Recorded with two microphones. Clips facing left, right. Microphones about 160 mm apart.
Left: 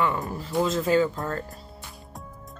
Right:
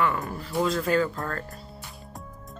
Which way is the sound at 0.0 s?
25° left (ahead or behind).